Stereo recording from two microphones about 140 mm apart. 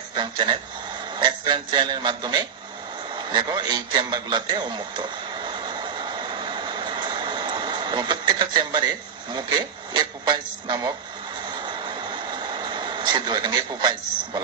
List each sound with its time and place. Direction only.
0.1 s a man's voice: 35° right (ahead or behind)
3.2 s radio: 35° right (ahead or behind)
12.1 s vehicle: 35° right (ahead or behind)